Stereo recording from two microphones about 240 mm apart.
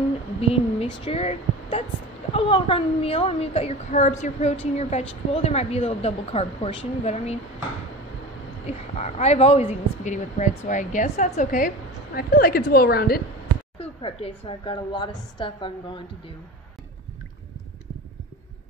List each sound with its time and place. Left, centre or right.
0.4 s a woman's voice: left
8.6 s a woman's voice: left
13.7 s a woman's voice: left